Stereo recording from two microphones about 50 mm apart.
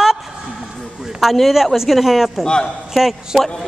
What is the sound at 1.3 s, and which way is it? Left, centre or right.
Speech, centre.